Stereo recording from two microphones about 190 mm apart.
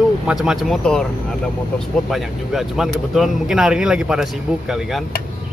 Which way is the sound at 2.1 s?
Centre (ahead or behind).